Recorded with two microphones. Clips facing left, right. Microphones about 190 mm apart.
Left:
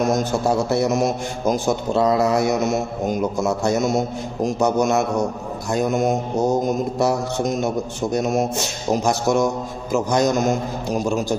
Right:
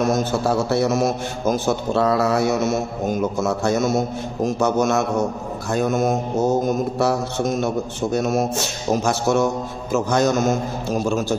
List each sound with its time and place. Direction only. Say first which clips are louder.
0.0 s mantra: even; 15° left (ahead or behind)